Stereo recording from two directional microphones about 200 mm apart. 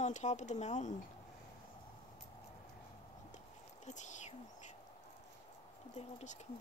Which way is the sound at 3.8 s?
35° left (ahead or behind).